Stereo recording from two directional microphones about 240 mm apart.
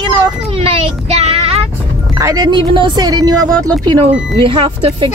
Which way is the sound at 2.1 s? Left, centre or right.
Centre.